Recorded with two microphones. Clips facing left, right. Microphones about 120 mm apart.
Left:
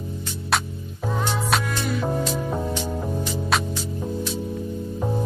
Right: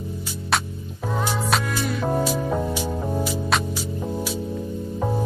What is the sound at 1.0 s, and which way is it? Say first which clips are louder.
Music: even; 5° right (ahead or behind).